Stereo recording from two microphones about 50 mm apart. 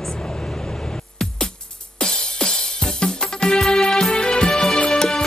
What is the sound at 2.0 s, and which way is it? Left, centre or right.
Music, centre.